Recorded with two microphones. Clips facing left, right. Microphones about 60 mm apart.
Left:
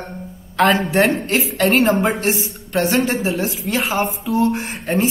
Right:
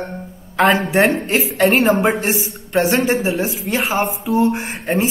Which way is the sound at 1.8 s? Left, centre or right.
Centre.